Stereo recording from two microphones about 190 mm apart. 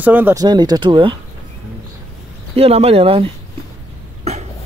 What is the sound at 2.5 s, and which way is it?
Speech, 35° right (ahead or behind).